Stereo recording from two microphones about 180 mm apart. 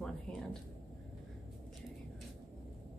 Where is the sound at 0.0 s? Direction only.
5° left (ahead or behind).